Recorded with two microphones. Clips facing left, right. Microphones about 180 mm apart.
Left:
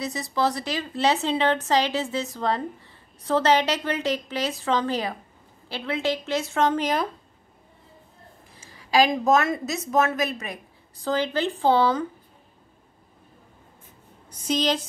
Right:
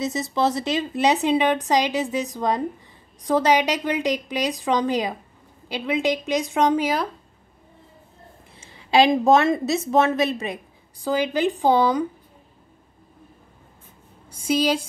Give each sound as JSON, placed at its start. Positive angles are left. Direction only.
{"t": 0.0, "sound": "speech", "side_deg": -20}
{"t": 8.5, "sound": "a woman's voice", "side_deg": -25}
{"t": 11.0, "sound": "speech", "side_deg": -10}
{"t": 14.3, "sound": "speech", "side_deg": -10}